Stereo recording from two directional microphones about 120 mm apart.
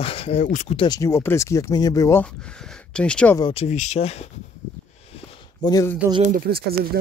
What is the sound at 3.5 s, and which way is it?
Speech, 75° left (ahead or behind).